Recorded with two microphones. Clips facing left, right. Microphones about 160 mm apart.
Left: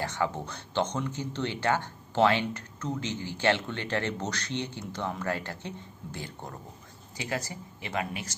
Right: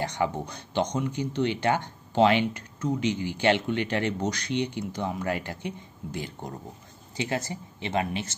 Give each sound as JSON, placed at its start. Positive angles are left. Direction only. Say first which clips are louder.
{"t": 0.0, "sound": "speech", "louder": "right 3 dB", "side_deg": -15}